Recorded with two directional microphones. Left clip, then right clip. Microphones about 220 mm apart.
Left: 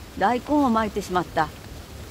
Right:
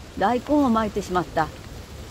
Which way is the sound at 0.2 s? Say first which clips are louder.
Even; 5° right (ahead or behind).